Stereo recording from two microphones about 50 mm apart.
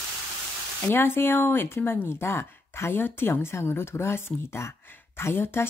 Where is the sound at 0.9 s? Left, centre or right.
Left.